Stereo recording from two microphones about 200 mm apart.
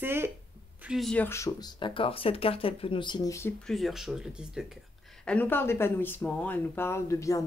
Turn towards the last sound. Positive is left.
turn(degrees=15)  # may be behind; listen again after turning